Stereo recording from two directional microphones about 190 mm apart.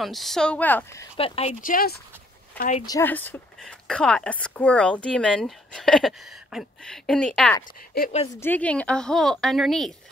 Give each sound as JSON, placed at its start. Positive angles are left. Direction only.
{"t": 0.0, "sound": "a woman's voice", "side_deg": 0}
{"t": 1.1, "sound": "speech", "side_deg": 30}
{"t": 1.6, "sound": "speech", "side_deg": 50}
{"t": 2.9, "sound": "a woman's voice", "side_deg": 10}